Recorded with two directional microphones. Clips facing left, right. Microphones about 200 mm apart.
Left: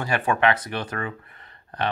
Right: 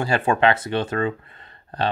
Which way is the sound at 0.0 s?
25° right (ahead or behind).